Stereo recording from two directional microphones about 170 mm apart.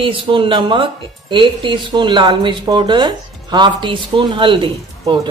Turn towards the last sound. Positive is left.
turn(degrees=-30)  # may be behind; listen again after turning